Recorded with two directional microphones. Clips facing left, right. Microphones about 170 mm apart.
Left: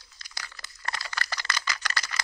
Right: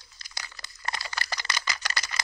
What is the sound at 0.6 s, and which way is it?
Computer keyboard, 15° right (ahead or behind).